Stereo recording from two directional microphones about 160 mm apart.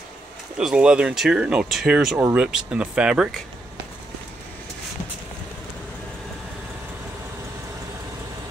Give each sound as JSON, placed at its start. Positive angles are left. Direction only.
{"t": 0.6, "sound": "speech", "side_deg": -5}